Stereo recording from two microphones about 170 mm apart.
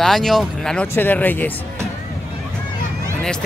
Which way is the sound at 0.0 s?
Centre (ahead or behind).